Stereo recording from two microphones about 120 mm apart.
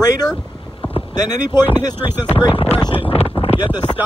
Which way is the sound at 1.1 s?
35° left (ahead or behind).